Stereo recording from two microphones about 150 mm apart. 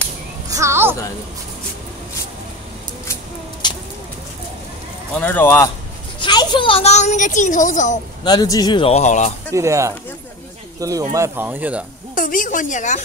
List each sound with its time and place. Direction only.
0.5 s a sound: 20° right (ahead or behind)
3.6 s a sound: 30° left (ahead or behind)
5.1 s speech: 10° left (ahead or behind)
6.1 s a child's voice: 30° left (ahead or behind); by 8.0 s 55° left (ahead or behind)
8.2 s speech: 30° left (ahead or behind)
8.9 s speech: 55° left (ahead or behind)
9.5 s speech: 20° right (ahead or behind)
12.2 s a woman's voice: 65° left (ahead or behind)